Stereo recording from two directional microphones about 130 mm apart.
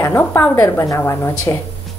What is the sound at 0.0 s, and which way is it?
A woman's voice, 15° left (ahead or behind).